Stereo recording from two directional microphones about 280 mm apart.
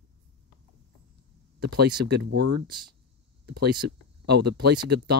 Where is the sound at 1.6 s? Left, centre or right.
Right.